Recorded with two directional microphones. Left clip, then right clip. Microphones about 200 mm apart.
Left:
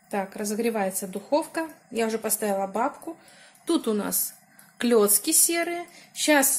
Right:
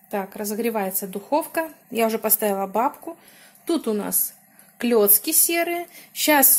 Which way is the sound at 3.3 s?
20° right (ahead or behind).